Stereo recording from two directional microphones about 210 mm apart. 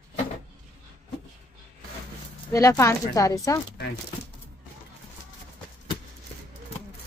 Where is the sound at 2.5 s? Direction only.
15° left (ahead or behind).